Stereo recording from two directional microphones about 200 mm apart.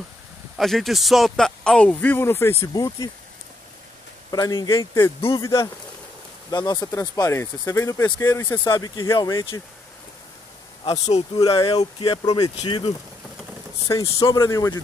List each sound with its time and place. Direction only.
0.6 s a man's voice: centre (ahead or behind); by 3.1 s 15° left (ahead or behind)
4.3 s speech: 20° left (ahead or behind)
10.8 s speech: 30° left (ahead or behind)
11.3 s speech: 20° left (ahead or behind)
14.0 s speech: 25° left (ahead or behind)
14.4 s speech: 15° left (ahead or behind)